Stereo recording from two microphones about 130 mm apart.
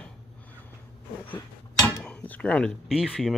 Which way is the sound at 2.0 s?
10° left (ahead or behind).